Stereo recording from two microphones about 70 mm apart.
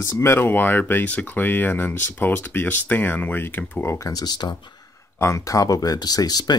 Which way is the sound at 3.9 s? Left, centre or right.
Left.